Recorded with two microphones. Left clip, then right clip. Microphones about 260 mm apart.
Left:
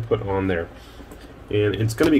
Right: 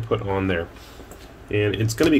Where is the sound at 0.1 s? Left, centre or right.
Centre.